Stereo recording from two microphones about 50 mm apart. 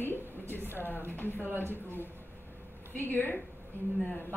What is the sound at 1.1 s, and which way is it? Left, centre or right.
Speech, left.